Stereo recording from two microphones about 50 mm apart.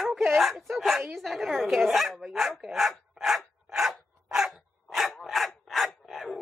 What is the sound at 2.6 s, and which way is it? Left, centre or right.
Dog, centre.